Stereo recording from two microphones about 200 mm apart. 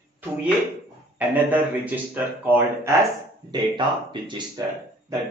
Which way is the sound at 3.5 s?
25° right (ahead or behind).